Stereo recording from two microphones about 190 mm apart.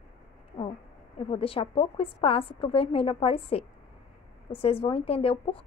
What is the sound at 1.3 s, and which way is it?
A woman's voice, 30° left (ahead or behind).